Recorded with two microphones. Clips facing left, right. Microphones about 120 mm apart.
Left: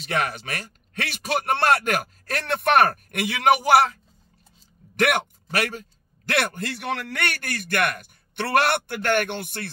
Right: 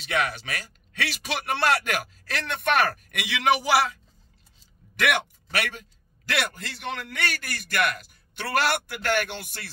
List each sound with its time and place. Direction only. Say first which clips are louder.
0.0 s a man's voice: left 1 dB; 45° left (ahead or behind)